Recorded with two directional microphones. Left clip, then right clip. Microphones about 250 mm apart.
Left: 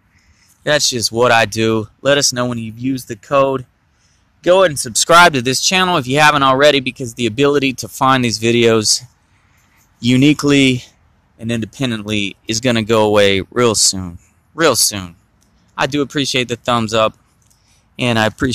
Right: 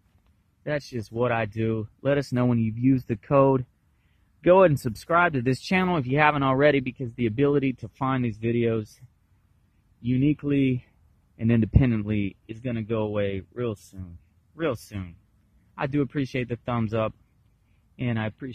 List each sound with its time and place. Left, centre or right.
0.7 s speech: centre
10.3 s speech: centre
11.3 s speech: centre; by 14.8 s left
14.9 s speech: centre